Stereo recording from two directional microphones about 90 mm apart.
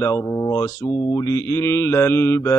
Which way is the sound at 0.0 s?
30° left (ahead or behind).